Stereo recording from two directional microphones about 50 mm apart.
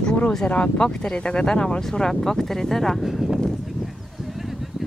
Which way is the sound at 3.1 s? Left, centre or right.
Centre.